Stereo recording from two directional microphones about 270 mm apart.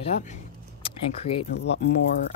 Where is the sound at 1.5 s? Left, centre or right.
Left.